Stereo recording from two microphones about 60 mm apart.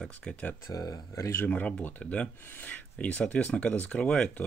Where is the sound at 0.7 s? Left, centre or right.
Left.